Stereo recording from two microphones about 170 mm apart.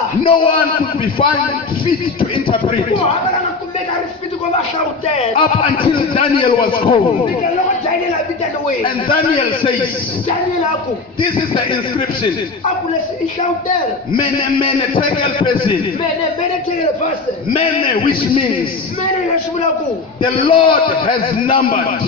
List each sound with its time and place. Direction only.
0.2 s a man's voice: 30° left (ahead or behind)
2.1 s a man's voice: 30° left (ahead or behind)
5.1 s a man's voice: 35° left (ahead or behind)
8.8 s a man's voice: 30° left (ahead or behind)
11.1 s a man's voice: 30° left (ahead or behind)
13.7 s a man's voice: 30° left (ahead or behind)
17.6 s a man's voice: 30° left (ahead or behind)
20.2 s a man's voice: 30° left (ahead or behind)